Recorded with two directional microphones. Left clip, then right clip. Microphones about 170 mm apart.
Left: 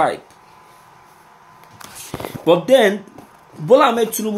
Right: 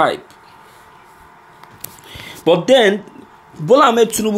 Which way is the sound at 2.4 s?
10° right (ahead or behind).